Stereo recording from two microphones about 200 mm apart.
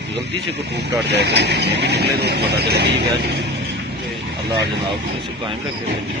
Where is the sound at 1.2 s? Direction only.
55° right (ahead or behind).